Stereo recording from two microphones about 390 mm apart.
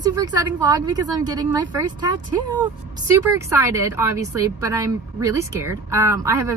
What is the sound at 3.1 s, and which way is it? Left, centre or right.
A woman's voice, centre.